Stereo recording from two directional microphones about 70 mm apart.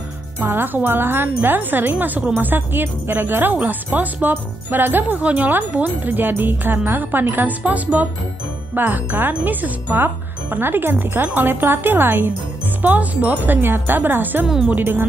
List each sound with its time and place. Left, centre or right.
0.4 s speech: right